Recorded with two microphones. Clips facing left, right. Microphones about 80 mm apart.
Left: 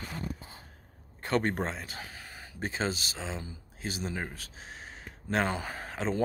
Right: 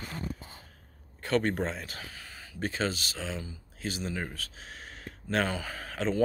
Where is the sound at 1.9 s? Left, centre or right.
Left.